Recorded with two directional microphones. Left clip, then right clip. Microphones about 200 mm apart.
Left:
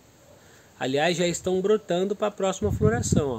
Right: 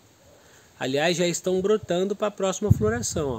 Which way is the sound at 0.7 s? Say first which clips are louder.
Even; 15° right (ahead or behind).